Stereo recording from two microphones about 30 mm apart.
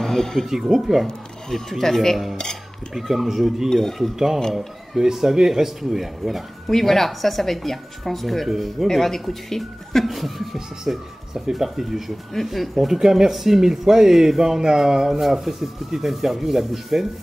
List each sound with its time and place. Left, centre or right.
0.0 s speech: centre
0.5 s speech: centre
1.5 s speech: centre
2.9 s speech: centre
5.0 s speech: centre
6.7 s speech: centre
8.8 s speech: centre
10.9 s speech: right
11.5 s speech: centre